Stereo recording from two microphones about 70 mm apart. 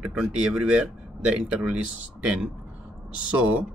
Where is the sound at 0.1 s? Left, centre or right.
Centre.